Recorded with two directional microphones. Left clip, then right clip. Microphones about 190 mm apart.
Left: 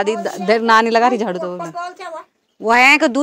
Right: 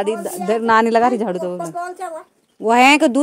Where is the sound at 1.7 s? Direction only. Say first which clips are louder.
Right 1 dB; 65° right (ahead or behind).